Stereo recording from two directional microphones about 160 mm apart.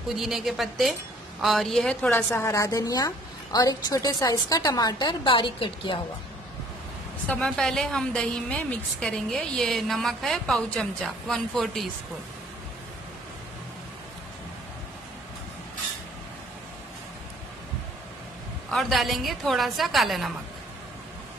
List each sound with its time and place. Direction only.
0.1 s a woman's voice: centre (ahead or behind); by 5.9 s 30° left (ahead or behind)
7.2 s a woman's voice: 5° left (ahead or behind)
18.7 s a woman's voice: centre (ahead or behind)